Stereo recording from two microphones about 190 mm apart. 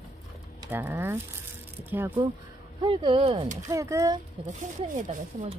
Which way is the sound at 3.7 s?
15° right (ahead or behind).